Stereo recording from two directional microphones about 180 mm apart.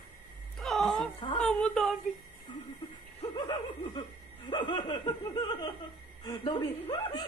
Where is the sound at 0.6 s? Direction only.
Centre (ahead or behind).